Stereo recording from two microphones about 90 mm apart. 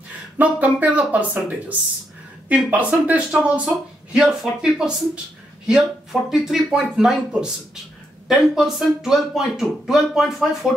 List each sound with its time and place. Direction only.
0.4 s speech: 15° right (ahead or behind)
6.3 s speech: 5° right (ahead or behind)